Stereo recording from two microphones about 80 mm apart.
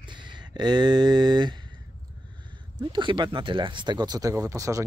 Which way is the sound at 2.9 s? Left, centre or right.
Right.